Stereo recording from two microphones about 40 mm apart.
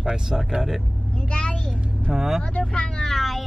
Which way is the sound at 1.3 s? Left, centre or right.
Left.